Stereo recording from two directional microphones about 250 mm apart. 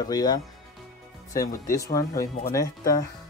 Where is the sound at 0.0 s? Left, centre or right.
Centre.